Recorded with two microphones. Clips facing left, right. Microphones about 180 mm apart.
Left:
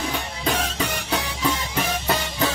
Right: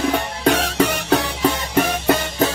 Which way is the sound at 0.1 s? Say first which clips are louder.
Right 8 dB; 70° right (ahead or behind).